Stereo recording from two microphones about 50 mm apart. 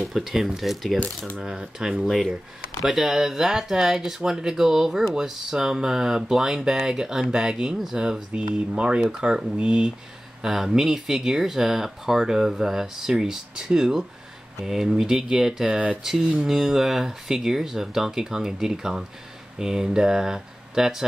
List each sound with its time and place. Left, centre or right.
0.1 s speech: centre
0.9 s speech: left
1.4 s speech: centre
10.4 s speech: centre